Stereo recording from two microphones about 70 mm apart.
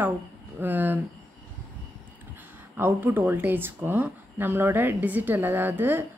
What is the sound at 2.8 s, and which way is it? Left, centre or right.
Speech, right.